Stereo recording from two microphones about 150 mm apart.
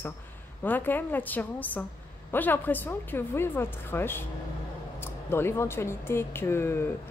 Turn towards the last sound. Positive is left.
turn(degrees=15)  # may be behind; listen again after turning